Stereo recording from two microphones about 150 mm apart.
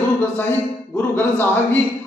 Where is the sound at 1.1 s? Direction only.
15° left (ahead or behind).